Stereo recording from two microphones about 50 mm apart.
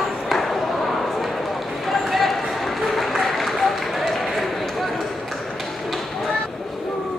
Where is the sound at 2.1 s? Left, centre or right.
Centre.